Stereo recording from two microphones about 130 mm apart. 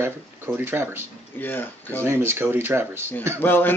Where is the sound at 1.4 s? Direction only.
15° left (ahead or behind).